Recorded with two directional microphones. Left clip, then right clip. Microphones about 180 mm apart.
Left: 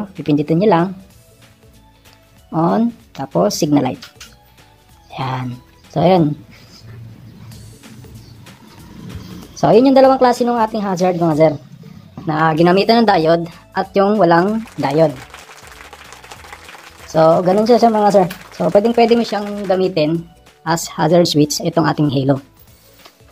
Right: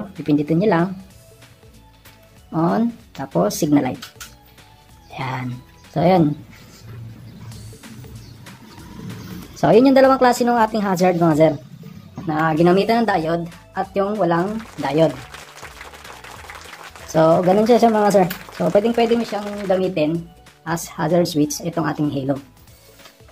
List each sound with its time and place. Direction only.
0.0 s speech: 25° left (ahead or behind)
2.5 s speech: 20° left (ahead or behind)
5.1 s speech: 20° left (ahead or behind)
9.6 s a woman's voice: 10° left (ahead or behind)
12.3 s speech: 45° left (ahead or behind)
14.5 s a woman's voice: centre (ahead or behind)
15.0 s a sound: centre (ahead or behind)
17.4 s a woman's voice: centre (ahead or behind)
19.7 s speech: 45° left (ahead or behind)